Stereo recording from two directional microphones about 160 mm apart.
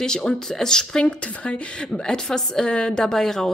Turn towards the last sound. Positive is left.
turn(degrees=5)  # may be behind; listen again after turning